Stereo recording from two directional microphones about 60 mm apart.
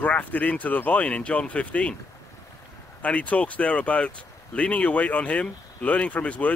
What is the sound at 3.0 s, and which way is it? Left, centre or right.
Speech, left.